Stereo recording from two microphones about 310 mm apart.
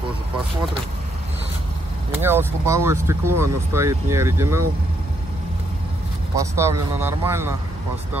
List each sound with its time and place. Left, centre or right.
2.2 s speech: centre
6.3 s speech: centre